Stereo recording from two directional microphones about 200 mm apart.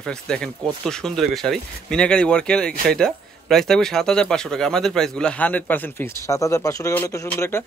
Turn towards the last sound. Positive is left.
turn(degrees=10)  # may be behind; listen again after turning